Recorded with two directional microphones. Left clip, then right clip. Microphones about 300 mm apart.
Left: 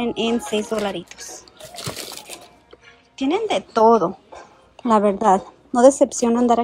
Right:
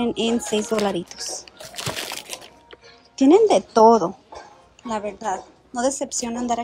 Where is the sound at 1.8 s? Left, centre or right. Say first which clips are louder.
Right 3 dB; centre.